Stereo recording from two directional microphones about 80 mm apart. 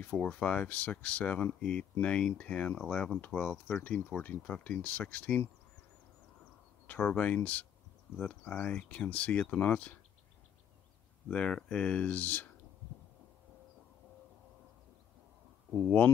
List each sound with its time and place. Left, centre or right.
0.0 s speech: centre
6.9 s speech: centre
11.2 s speech: centre